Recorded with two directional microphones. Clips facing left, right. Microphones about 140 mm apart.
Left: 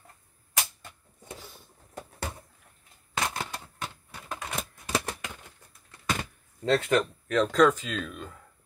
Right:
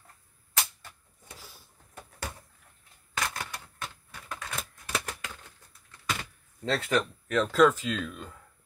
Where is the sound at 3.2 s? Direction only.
25° left (ahead or behind).